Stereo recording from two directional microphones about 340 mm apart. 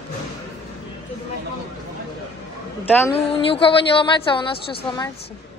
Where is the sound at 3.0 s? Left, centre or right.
Centre.